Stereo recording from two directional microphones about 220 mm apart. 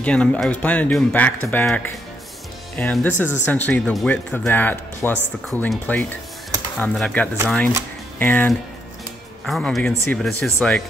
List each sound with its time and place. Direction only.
0.0 s speech: 5° left (ahead or behind)